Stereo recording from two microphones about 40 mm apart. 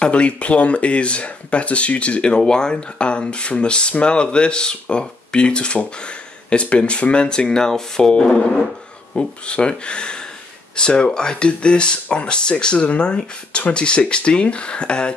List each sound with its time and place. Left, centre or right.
0.0 s speech: left